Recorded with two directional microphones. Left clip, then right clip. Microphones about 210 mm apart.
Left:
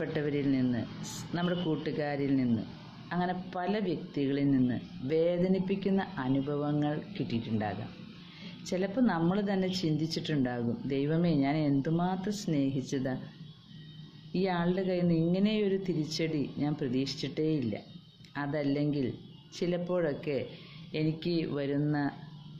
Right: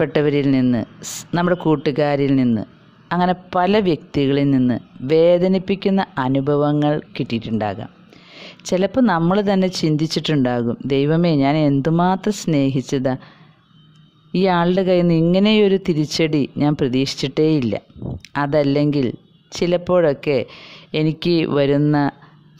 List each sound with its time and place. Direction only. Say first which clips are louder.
0.0 s speech: right 15 dB; 50° right (ahead or behind)
14.3 s speech: right 14 dB; 50° right (ahead or behind)